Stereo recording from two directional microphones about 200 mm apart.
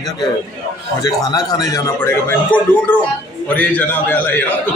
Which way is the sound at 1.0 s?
20° left (ahead or behind).